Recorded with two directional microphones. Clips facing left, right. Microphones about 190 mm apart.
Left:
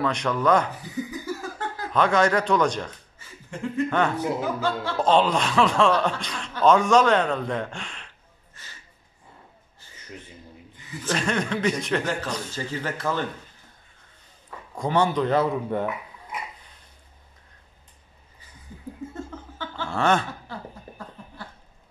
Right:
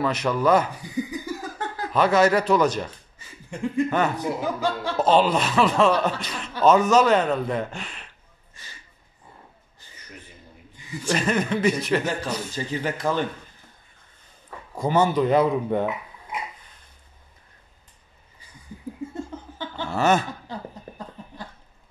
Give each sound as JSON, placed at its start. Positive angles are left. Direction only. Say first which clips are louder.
{"t": 0.0, "sound": "a man's voice", "louder": "right 1 dB", "side_deg": -5}
{"t": 2.0, "sound": "a man's voice", "louder": "right 2 dB", "side_deg": -5}
{"t": 11.1, "sound": "a man's voice", "louder": "right 2 dB", "side_deg": -5}
{"t": 14.8, "sound": "speech", "louder": "right 2 dB", "side_deg": -5}
{"t": 19.1, "sound": "laughter", "louder": "right 2 dB", "side_deg": -15}
{"t": 19.9, "sound": "a man's voice", "louder": "right 2 dB", "side_deg": -5}
{"t": 20.5, "sound": "a man's voice", "louder": "right 3 dB", "side_deg": -15}